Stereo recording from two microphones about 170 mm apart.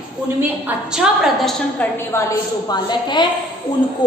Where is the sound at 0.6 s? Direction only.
5° right (ahead or behind).